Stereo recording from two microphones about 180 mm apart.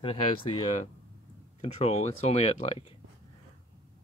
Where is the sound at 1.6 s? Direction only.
35° left (ahead or behind).